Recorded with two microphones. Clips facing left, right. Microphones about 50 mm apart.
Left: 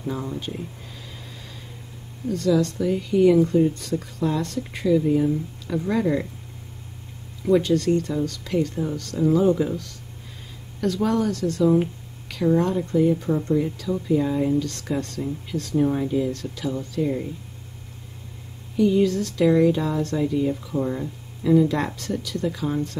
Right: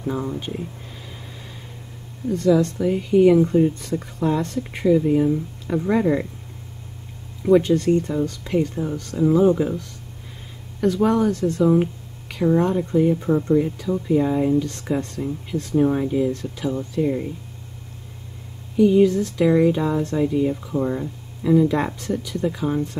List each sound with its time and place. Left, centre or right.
0.0 s speech: centre
2.2 s speech: right
7.4 s speech: right
18.8 s speech: centre
21.6 s speech: centre